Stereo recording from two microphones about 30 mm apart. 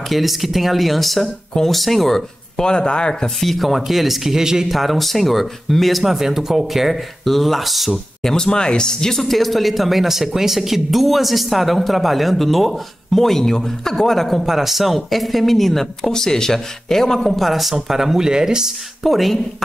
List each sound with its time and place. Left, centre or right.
0.1 s speech: centre
1.2 s speech: left
1.7 s speech: centre
2.1 s speech: left
3.3 s speech: centre
3.6 s speech: centre
4.6 s speech: centre
8.2 s speech: centre
9.2 s speech: centre
14.4 s speech: centre
17.4 s speech: centre; by 18.7 s right
19.0 s speech: centre